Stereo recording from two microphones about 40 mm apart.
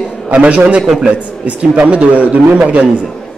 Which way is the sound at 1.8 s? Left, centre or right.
Right.